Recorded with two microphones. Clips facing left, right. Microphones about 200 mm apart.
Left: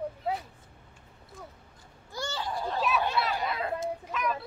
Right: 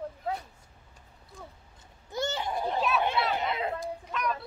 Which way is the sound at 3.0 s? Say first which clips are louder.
Right 1 dB; 20° right (ahead or behind).